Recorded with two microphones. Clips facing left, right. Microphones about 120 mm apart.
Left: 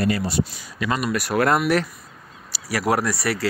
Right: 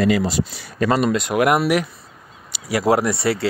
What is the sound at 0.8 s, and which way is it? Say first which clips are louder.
Speech: right 6 dB; 35° right (ahead or behind).